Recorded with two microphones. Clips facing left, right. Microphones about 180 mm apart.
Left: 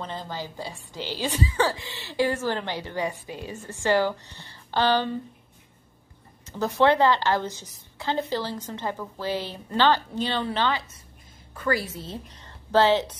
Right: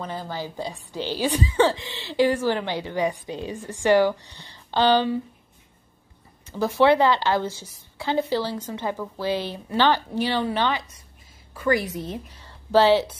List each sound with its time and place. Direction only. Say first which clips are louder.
0.0 s a woman's voice: right 3 dB; 10° right (ahead or behind)
6.4 s a woman's voice: right 2 dB; 10° right (ahead or behind)